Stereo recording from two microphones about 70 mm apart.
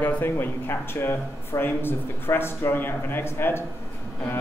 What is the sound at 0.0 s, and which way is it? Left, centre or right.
Speech, left.